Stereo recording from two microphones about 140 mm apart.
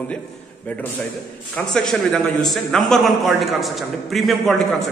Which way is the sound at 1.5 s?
5° left (ahead or behind).